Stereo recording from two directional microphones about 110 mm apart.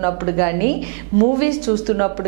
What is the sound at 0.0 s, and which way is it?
A woman's voice, 15° right (ahead or behind).